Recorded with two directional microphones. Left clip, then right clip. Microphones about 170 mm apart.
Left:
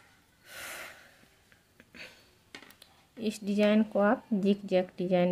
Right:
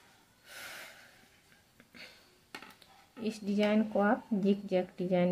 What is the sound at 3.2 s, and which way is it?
Speech, 30° left (ahead or behind).